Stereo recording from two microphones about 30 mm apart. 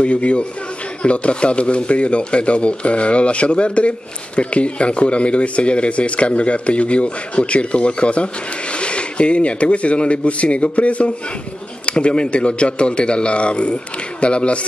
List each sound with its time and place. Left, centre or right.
0.0 s a man's voice: left